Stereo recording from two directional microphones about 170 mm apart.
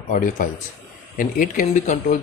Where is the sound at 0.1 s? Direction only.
45° left (ahead or behind).